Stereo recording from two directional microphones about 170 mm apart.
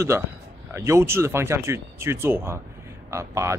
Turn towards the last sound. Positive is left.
turn(degrees=-15)  # may be behind; listen again after turning